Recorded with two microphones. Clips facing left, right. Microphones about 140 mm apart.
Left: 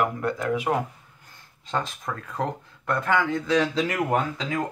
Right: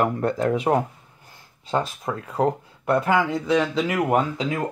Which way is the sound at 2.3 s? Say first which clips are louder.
Right 8 dB; 30° right (ahead or behind).